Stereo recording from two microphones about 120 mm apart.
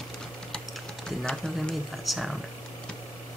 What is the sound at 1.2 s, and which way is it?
Speech, 5° left (ahead or behind).